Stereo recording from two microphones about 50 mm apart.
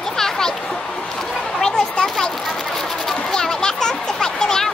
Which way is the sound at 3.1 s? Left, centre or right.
Centre.